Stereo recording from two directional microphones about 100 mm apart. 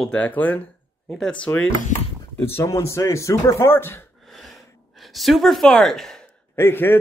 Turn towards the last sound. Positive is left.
turn(degrees=25)  # may be behind; listen again after turning